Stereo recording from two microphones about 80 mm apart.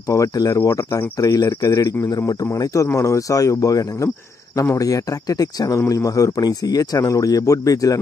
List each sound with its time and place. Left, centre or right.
0.1 s a man's voice: left
1.2 s a man's voice: left